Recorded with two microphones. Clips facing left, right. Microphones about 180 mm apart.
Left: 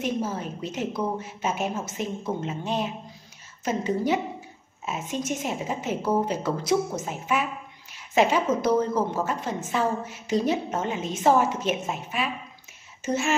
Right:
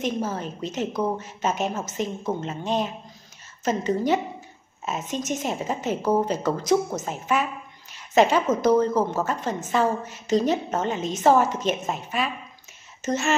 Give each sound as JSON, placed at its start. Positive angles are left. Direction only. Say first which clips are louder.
{"t": 0.0, "sound": "a woman's voice", "louder": "right 1 dB", "side_deg": 5}
{"t": 6.6, "sound": "speech", "louder": "right 2 dB", "side_deg": -45}
{"t": 7.1, "sound": "a woman's voice", "louder": "right 2 dB", "side_deg": 5}